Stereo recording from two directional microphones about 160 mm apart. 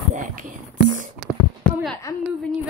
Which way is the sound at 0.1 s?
55° right (ahead or behind).